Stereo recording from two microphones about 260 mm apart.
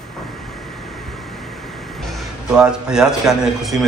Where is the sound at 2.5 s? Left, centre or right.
Centre.